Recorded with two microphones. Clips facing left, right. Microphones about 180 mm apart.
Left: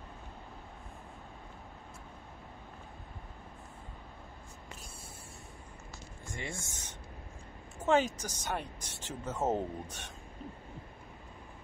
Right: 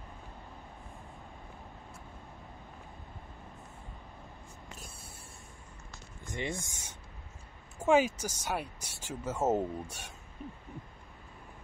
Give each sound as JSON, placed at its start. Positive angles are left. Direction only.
{"t": 6.3, "sound": "speech", "side_deg": -20}
{"t": 7.8, "sound": "speech", "side_deg": -10}